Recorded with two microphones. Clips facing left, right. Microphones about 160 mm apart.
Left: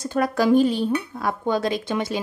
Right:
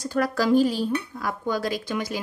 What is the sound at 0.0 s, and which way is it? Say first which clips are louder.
A woman's voice: left 3 dB; 20° left (ahead or behind).